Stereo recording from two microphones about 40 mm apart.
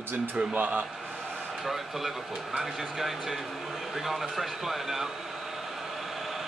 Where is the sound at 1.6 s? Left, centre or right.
Centre.